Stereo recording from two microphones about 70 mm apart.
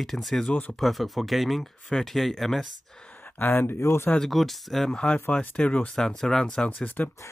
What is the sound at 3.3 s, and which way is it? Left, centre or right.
Speech, left.